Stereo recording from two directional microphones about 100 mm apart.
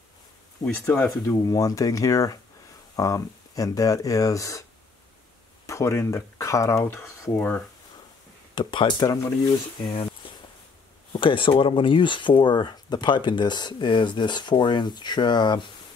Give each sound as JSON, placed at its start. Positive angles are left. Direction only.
{"t": 0.8, "sound": "speech", "side_deg": 10}
{"t": 1.1, "sound": "speech", "side_deg": 35}
{"t": 5.7, "sound": "speech", "side_deg": 30}
{"t": 7.3, "sound": "speech", "side_deg": 20}
{"t": 8.5, "sound": "speech", "side_deg": 55}
{"t": 9.8, "sound": "a sound", "side_deg": 55}
{"t": 11.1, "sound": "speech", "side_deg": 60}